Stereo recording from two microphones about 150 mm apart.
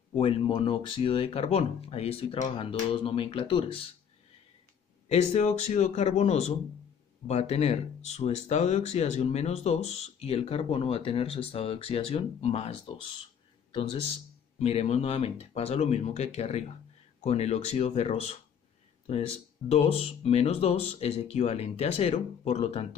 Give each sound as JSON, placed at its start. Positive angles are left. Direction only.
{"t": 0.2, "sound": "speech", "side_deg": 35}
{"t": 5.0, "sound": "speech", "side_deg": 45}
{"t": 19.7, "sound": "speech", "side_deg": 45}